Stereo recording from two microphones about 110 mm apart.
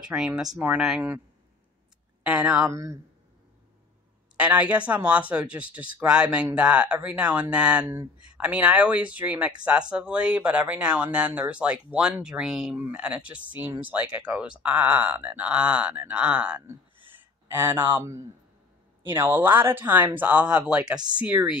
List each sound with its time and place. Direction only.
0.1 s speech: 15° right (ahead or behind)
2.2 s speech: 10° right (ahead or behind)
2.6 s speech: 25° right (ahead or behind)
4.4 s speech: 10° right (ahead or behind)
17.1 s a sound: 20° right (ahead or behind)
19.1 s speech: 20° right (ahead or behind)